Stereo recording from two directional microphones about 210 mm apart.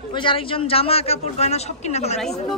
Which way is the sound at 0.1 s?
25° left (ahead or behind).